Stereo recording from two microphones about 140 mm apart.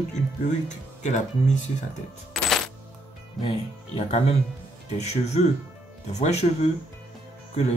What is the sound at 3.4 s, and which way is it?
Speech, 45° left (ahead or behind).